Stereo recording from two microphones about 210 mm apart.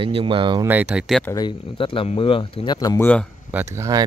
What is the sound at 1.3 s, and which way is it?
Speech, 20° left (ahead or behind).